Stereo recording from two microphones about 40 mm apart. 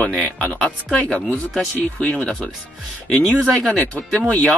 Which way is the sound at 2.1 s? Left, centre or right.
Left.